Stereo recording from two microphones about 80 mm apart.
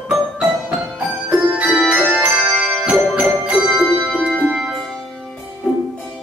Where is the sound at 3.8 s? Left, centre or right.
Centre.